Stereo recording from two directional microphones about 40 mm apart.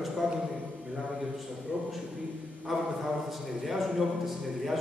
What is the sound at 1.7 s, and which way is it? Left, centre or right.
Speech, right.